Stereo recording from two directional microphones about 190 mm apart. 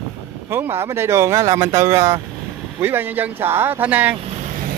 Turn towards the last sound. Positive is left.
turn(degrees=-10)  # may be behind; listen again after turning